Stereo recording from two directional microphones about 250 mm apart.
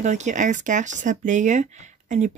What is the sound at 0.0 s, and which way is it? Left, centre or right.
Speech, right.